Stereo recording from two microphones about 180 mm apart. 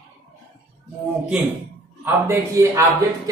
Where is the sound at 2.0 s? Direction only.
15° right (ahead or behind).